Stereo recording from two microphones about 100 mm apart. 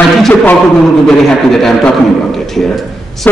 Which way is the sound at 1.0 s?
5° left (ahead or behind).